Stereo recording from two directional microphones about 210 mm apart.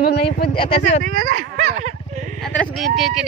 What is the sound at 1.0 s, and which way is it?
Speech, 45° right (ahead or behind).